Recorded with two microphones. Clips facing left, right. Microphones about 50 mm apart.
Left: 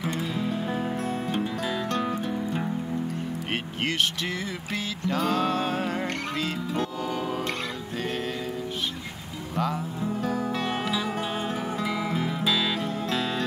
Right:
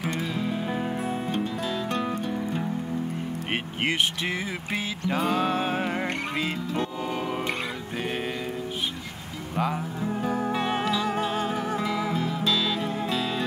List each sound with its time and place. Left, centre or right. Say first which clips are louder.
0.1 s music: even; centre
1.3 s music: even; centre
5.1 s music: even; centre
9.6 s music: right 1 dB; centre
10.9 s music: right 3 dB; centre